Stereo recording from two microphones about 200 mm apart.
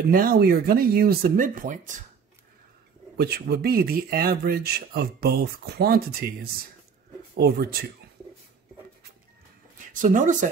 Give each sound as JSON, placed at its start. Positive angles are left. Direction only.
{"t": 0.1, "sound": "speech", "side_deg": -45}
{"t": 3.2, "sound": "speech", "side_deg": -55}
{"t": 9.9, "sound": "speech", "side_deg": -40}